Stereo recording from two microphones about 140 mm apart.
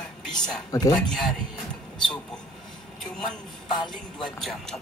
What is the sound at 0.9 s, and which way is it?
Speech, 5° left (ahead or behind).